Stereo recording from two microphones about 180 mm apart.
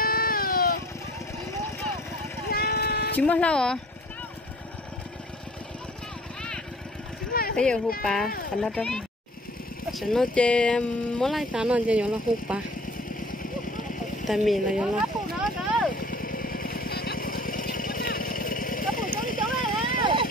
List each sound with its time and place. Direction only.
0.0 s baby cry: 55° left (ahead or behind)
2.5 s vehicle: 60° left (ahead or behind)
3.2 s speech: 5° left (ahead or behind)
7.5 s speech: 5° left (ahead or behind)
13.1 s a sound: 50° left (ahead or behind)
14.2 s a sound: centre (ahead or behind)
15.9 s vehicle: 50° left (ahead or behind)
20.0 s vehicle: 25° right (ahead or behind)